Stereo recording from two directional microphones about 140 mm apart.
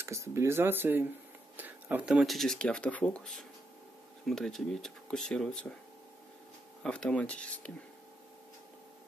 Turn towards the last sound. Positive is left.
turn(degrees=10)  # may be behind; listen again after turning